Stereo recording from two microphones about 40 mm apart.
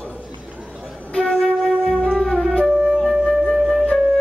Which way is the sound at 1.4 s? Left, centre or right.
Centre.